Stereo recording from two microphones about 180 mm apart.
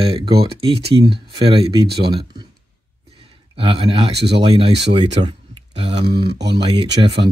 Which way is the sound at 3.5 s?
30° right (ahead or behind).